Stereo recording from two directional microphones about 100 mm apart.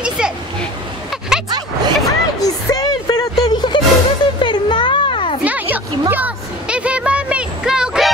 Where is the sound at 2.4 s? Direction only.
40° left (ahead or behind).